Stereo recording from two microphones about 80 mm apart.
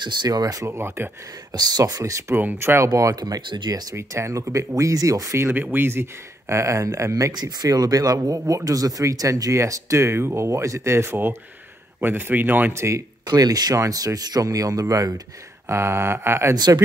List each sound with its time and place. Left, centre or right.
0.0 s speech: right
0.7 s speech: right
1.5 s speech: right
2.3 s speech: right
2.9 s speech: right
3.4 s speech: right
3.9 s speech: right
5.5 s speech: right
6.5 s speech: right
13.3 s speech: right
15.7 s speech: right
16.5 s speech: right